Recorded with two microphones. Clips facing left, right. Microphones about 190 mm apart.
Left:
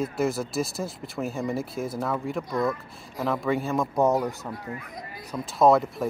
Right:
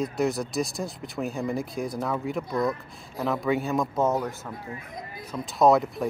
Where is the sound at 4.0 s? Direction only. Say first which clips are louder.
Left 4 dB; 15° left (ahead or behind).